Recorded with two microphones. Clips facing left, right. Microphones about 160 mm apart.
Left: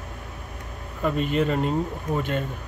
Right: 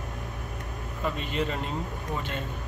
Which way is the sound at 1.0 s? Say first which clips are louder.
Left 7 dB; 50° left (ahead or behind).